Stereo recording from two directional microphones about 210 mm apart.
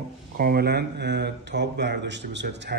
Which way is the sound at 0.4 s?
45° right (ahead or behind).